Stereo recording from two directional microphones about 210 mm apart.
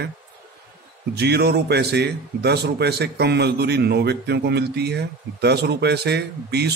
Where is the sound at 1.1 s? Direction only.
50° right (ahead or behind).